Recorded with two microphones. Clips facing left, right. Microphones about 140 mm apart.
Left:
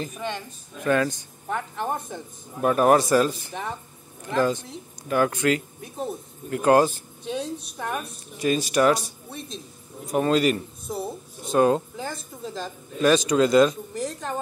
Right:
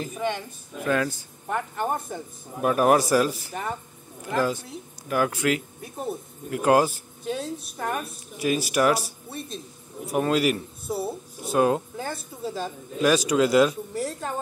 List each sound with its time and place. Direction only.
0.0 s speech: 5° right (ahead or behind)